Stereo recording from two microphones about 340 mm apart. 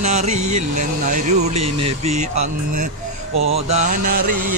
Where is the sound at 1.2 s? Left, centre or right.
Centre.